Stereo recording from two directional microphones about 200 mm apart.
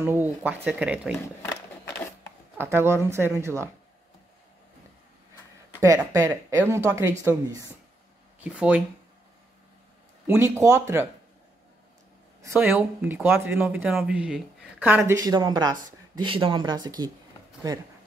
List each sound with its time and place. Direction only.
0.0 s speech: 10° right (ahead or behind)
1.2 s a sound: 15° left (ahead or behind)
2.5 s speech: 10° right (ahead or behind)
5.8 s speech: 15° right (ahead or behind)
10.2 s speech: 10° right (ahead or behind)
12.4 s speech: 10° right (ahead or behind)
15.0 s speech: 15° right (ahead or behind)